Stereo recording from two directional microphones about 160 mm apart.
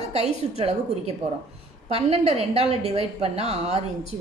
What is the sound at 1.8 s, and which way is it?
A woman's voice, 40° right (ahead or behind).